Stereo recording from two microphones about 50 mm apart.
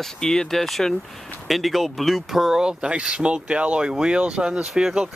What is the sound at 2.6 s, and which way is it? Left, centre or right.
Speech, centre.